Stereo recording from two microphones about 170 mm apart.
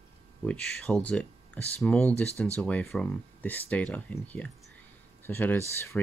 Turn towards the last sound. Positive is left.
turn(degrees=10)  # may be behind; listen again after turning